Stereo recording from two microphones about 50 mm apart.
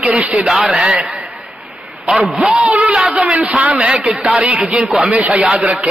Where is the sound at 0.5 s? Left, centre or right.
Centre.